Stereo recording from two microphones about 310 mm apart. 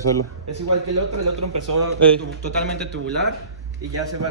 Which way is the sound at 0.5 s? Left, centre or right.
Right.